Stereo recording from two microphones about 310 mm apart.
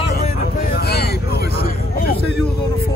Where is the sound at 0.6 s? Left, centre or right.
Left.